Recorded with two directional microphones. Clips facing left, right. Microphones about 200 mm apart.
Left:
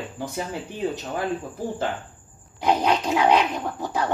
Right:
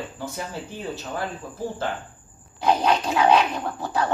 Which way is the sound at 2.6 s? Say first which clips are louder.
Even; 15° left (ahead or behind).